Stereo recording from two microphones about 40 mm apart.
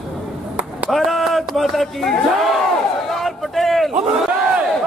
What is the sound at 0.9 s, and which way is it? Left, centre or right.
Speech, centre.